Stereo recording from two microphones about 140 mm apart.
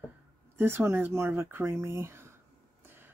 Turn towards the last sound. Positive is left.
turn(degrees=-15)  # may be behind; listen again after turning